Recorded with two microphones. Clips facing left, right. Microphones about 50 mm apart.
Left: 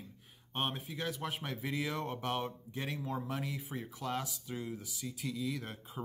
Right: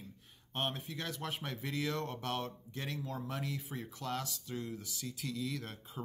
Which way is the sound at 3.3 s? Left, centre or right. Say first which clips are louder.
Left 1 dB; centre.